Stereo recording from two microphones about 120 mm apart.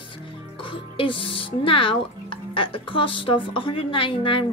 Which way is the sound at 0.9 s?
45° left (ahead or behind).